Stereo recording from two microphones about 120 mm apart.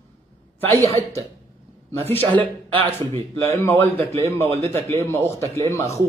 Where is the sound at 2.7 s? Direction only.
45° right (ahead or behind).